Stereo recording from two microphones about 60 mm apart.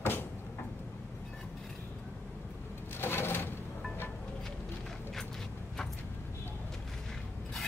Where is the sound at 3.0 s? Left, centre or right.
Left.